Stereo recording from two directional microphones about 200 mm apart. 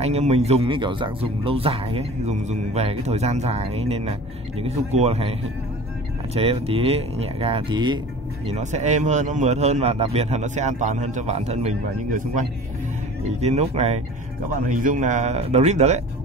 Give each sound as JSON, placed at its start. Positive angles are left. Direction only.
{"t": 0.0, "sound": "a man's voice", "side_deg": -35}
{"t": 6.3, "sound": "speech", "side_deg": -30}
{"t": 8.5, "sound": "a man's voice", "side_deg": -35}